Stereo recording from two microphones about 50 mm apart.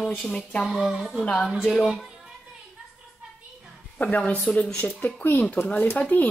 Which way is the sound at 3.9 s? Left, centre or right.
Left.